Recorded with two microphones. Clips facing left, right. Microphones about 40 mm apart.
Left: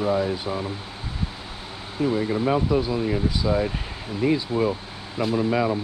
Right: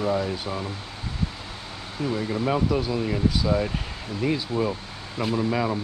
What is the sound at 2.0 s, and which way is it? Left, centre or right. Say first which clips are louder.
Speech: left 4 dB; centre.